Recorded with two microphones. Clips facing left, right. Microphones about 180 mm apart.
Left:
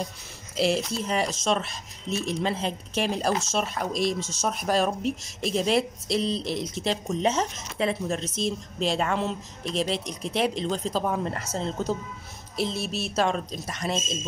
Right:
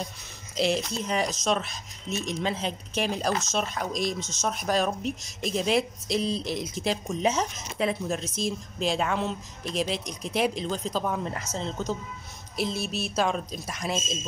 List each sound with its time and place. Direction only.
0.6 s speech: 5° left (ahead or behind)
4.2 s speech: 35° left (ahead or behind)
4.5 s speech: centre (ahead or behind)